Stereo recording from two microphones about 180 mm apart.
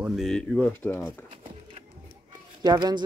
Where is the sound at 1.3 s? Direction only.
35° right (ahead or behind).